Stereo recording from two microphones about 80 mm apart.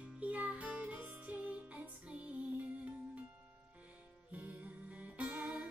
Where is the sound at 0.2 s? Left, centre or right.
Centre.